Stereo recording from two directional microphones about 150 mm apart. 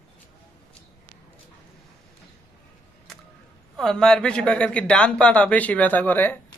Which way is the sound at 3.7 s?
5° left (ahead or behind).